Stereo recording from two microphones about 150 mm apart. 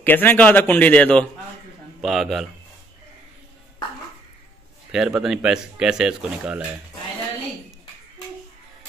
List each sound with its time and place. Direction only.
0.0 s a man's voice: 15° left (ahead or behind)
4.9 s speech: 5° right (ahead or behind)